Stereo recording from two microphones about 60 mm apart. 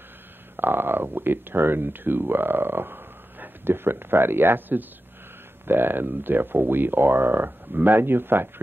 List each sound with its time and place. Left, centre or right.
0.6 s speech: right